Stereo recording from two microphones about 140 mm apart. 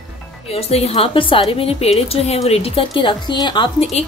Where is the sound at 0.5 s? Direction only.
45° left (ahead or behind).